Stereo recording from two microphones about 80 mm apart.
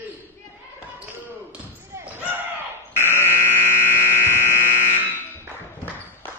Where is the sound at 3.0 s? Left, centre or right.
Left.